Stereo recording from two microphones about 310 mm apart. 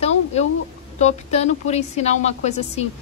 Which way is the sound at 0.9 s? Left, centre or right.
Left.